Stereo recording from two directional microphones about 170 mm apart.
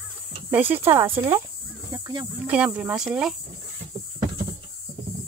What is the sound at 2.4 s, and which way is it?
Speech, 10° right (ahead or behind).